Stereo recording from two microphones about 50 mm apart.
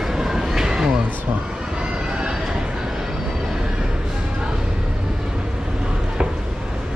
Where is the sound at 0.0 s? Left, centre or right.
Centre.